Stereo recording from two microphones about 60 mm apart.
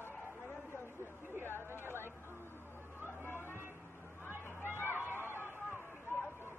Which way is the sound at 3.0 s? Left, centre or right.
Left.